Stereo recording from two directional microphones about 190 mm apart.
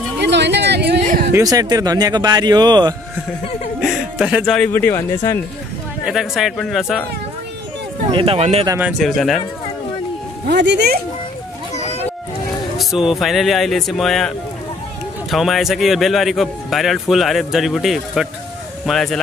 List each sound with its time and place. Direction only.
0.2 s a sound: 65° right (ahead or behind)
1.0 s a sound: 45° right (ahead or behind)
1.3 s speech: 20° right (ahead or behind)
3.8 s chuckle: 5° right (ahead or behind)
4.6 s speech: 10° left (ahead or behind)
6.0 s a man's voice: centre (ahead or behind)
8.1 s speech: 30° right (ahead or behind)
8.6 s a man's voice: 10° right (ahead or behind)
10.5 s speech: 65° right (ahead or behind)
11.7 s a sound: 35° left (ahead or behind)
12.7 s a man's voice: centre (ahead or behind)
15.3 s a man's voice: centre (ahead or behind)